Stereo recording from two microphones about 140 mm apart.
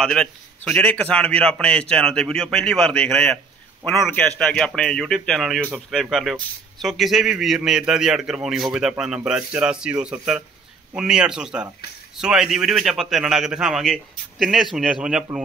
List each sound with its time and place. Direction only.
0.0 s a man's voice: 5° left (ahead or behind)